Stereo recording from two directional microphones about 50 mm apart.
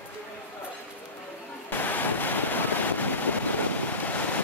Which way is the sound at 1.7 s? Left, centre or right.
Left.